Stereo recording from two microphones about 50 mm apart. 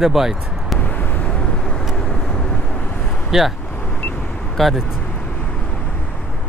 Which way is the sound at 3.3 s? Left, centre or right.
Centre.